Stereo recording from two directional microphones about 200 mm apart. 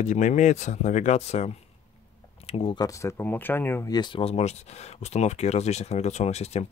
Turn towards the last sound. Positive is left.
turn(degrees=35)  # may be behind; listen again after turning